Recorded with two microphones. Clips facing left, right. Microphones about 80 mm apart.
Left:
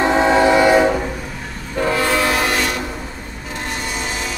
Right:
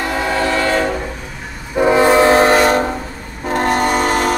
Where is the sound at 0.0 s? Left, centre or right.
Left; by 1.1 s centre.